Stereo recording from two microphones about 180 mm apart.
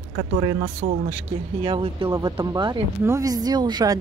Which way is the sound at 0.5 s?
35° right (ahead or behind).